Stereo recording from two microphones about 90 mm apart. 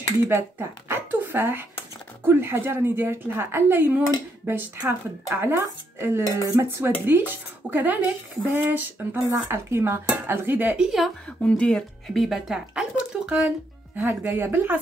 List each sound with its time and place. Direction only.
0.3 s speech: 25° right (ahead or behind)
6.4 s dishes: 35° right (ahead or behind)
7.1 s speech: 25° right (ahead or behind)
11.4 s speech: 10° left (ahead or behind)
12.2 s speech: 5° right (ahead or behind)
13.9 s speech: 25° right (ahead or behind)